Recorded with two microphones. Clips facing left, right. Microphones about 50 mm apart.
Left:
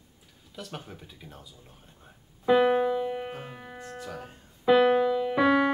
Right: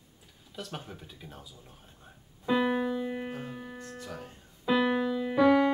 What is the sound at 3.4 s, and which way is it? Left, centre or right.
Music, left.